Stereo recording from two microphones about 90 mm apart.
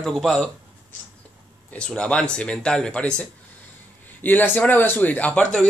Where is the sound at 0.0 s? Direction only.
5° left (ahead or behind).